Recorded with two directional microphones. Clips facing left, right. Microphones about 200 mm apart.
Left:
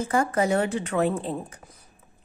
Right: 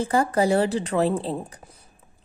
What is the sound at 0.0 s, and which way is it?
A woman's voice, 35° right (ahead or behind).